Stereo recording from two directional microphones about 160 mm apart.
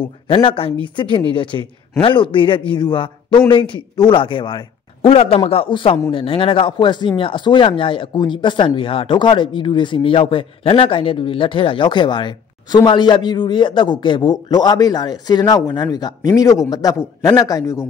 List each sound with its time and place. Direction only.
0.0 s a man's voice: 35° left (ahead or behind)